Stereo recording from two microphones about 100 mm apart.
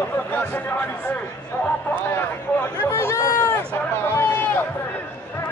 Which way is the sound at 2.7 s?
25° left (ahead or behind).